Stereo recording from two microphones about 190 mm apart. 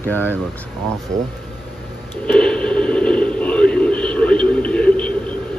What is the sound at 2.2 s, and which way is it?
Radio, 5° left (ahead or behind).